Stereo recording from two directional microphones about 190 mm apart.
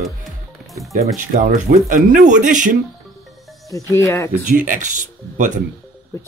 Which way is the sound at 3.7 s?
15° left (ahead or behind).